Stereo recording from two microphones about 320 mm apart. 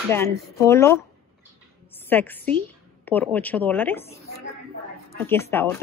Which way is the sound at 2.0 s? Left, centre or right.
Centre.